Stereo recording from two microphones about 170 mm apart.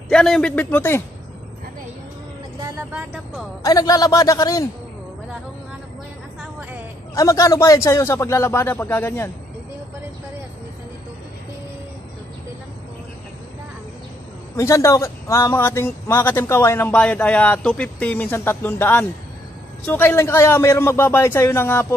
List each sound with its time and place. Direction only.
0.1 s a man's voice: 5° left (ahead or behind)
2.9 s speech: 5° right (ahead or behind)
3.6 s a man's voice: 20° left (ahead or behind)
7.2 s a man's voice: 20° left (ahead or behind)
14.6 s a man's voice: 15° left (ahead or behind)